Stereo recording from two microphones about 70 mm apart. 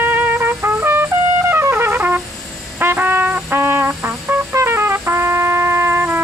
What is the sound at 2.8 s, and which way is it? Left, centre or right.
Brass instrument, right.